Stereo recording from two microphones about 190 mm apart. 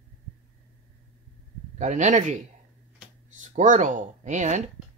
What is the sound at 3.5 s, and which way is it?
Speech, 40° right (ahead or behind).